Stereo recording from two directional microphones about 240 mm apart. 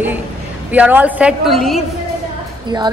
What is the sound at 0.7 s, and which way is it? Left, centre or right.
A woman's voice, centre.